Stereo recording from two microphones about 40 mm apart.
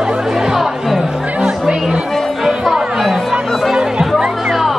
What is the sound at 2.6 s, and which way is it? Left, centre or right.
Chatter, centre.